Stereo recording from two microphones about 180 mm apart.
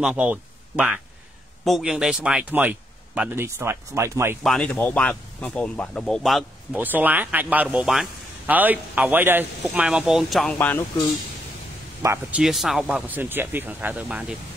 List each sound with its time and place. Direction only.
0.0 s speech: 5° right (ahead or behind)
4.4 s speech: centre (ahead or behind)
12.0 s speech: 15° right (ahead or behind)
12.4 s speech: centre (ahead or behind)